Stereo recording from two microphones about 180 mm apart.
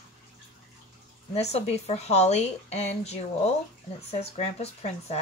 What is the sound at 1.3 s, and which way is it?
Speech, 35° left (ahead or behind).